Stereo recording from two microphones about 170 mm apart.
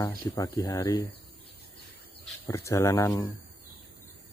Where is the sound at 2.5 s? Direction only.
15° left (ahead or behind).